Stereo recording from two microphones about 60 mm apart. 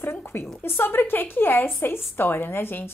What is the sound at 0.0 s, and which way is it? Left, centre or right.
A woman's voice, left.